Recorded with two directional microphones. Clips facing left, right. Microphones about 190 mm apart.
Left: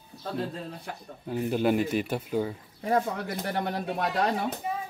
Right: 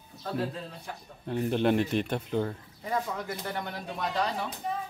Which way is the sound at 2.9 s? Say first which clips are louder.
Left 5 dB; 60° left (ahead or behind).